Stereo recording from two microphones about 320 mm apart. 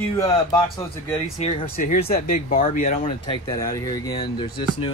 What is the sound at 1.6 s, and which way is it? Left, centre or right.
Speech, left.